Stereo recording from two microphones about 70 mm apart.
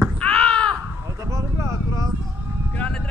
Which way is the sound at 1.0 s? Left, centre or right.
Right.